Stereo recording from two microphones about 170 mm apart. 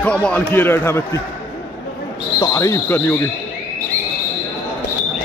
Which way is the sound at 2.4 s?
20° left (ahead or behind).